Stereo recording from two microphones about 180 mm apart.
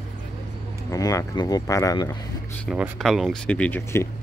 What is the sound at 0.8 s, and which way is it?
Speech, 20° left (ahead or behind).